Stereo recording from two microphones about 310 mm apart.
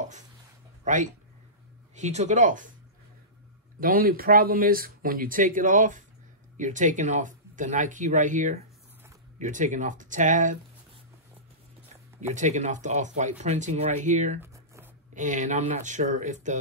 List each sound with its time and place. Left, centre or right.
0.8 s speech: right
3.8 s speech: right
12.2 s speech: right
14.4 s writing: centre
15.1 s speech: right